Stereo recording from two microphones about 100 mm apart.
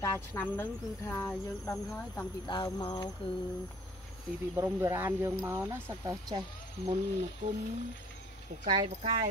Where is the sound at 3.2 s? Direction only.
65° left (ahead or behind).